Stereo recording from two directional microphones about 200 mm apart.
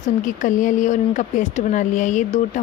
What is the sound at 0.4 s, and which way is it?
Speech, 40° left (ahead or behind).